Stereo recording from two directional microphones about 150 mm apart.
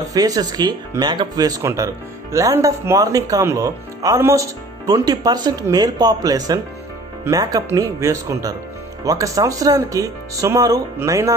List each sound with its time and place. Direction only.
0.1 s speech: 25° right (ahead or behind)